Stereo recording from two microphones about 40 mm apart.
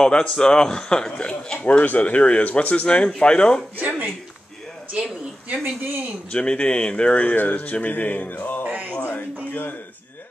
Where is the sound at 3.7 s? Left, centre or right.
Right.